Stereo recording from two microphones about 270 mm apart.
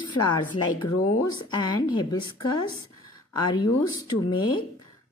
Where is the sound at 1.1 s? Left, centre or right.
Centre.